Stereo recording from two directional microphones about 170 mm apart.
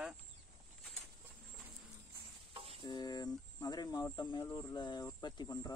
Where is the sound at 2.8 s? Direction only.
25° left (ahead or behind).